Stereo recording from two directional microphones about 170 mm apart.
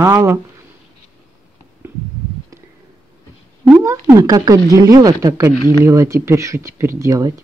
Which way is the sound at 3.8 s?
20° right (ahead or behind).